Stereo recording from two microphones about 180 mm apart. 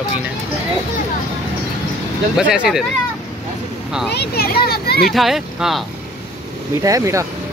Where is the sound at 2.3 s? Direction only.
5° right (ahead or behind).